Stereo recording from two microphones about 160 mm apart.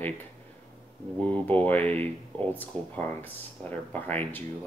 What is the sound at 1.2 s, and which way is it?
Speech, 10° left (ahead or behind).